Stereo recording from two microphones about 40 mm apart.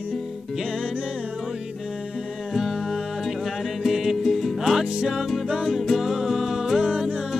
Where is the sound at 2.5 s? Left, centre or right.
Centre.